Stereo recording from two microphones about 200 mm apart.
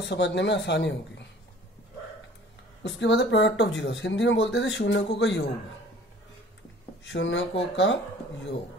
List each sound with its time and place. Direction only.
0.0 s speech: 60° left (ahead or behind)
2.8 s speech: 60° left (ahead or behind)
7.1 s speech: 65° left (ahead or behind)